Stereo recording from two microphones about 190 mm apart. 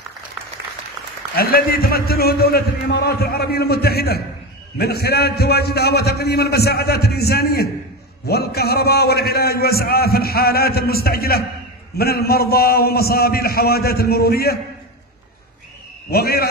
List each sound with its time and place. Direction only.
1.3 s a man's voice: 55° left (ahead or behind)
16.1 s a man's voice: 55° left (ahead or behind)